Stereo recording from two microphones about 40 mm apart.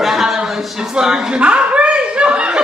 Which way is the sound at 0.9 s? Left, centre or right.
Centre.